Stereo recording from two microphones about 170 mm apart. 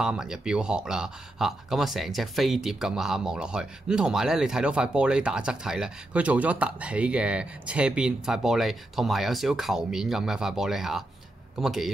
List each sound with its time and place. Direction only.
0.0 s speech: 5° right (ahead or behind)